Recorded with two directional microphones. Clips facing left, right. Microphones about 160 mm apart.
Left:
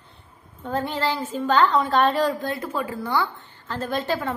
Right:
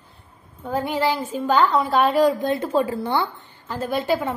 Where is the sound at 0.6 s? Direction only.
10° right (ahead or behind).